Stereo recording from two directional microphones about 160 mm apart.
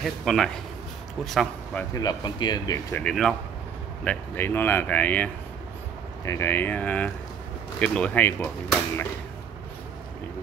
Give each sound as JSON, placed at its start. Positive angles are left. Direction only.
{"t": 0.0, "sound": "speech", "side_deg": 0}
{"t": 2.0, "sound": "speech", "side_deg": 25}
{"t": 3.0, "sound": "speech", "side_deg": 5}